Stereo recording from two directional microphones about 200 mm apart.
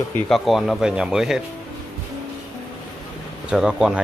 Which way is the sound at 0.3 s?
Centre (ahead or behind).